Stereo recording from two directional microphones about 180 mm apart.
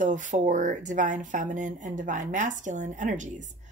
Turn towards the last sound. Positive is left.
turn(degrees=-45)  # may be behind; listen again after turning